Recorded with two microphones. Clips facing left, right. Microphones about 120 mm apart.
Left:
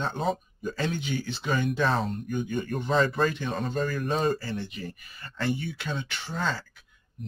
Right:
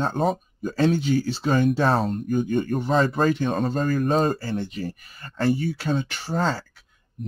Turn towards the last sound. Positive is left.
turn(degrees=-40)  # may be behind; listen again after turning